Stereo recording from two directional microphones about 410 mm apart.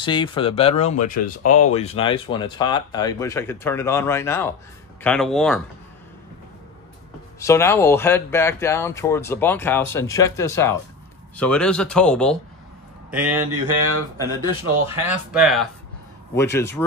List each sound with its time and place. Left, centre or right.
0.0 s speech: centre
7.3 s speech: centre
13.5 s a sound: right
14.2 s speech: centre
15.0 s speech: centre